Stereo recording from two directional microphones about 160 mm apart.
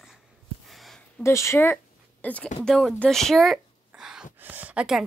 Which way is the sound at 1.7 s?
5° left (ahead or behind).